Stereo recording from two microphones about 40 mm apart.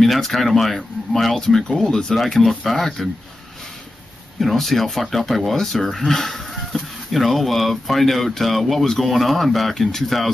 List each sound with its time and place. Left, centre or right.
0.0 s speech: centre
1.7 s speech: left
2.4 s speech: centre
4.4 s speech: centre